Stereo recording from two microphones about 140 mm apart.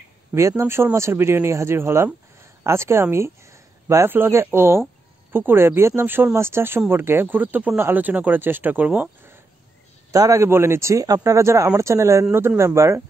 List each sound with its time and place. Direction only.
0.3 s speech: 20° right (ahead or behind)